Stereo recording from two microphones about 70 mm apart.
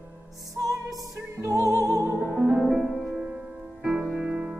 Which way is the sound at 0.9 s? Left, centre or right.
Right.